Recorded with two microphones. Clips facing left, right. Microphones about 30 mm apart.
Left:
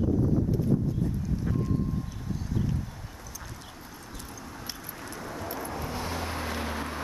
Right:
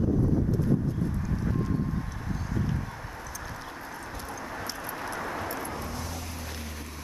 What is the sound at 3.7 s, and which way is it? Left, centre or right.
Clip-clop, right.